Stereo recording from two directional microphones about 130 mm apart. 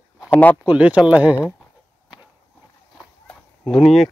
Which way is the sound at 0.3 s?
10° left (ahead or behind).